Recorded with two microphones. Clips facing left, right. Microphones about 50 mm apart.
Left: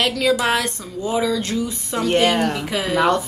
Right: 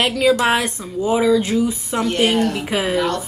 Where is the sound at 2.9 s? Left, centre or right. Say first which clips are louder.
Left 6 dB; left.